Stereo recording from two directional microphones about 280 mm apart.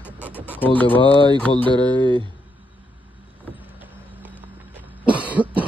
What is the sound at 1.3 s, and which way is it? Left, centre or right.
Speech, centre.